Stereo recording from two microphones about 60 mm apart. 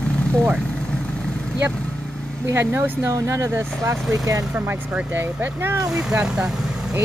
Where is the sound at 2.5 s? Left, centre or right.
Right.